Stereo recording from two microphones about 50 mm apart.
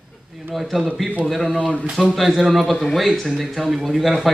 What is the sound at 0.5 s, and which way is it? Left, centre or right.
Speech, centre.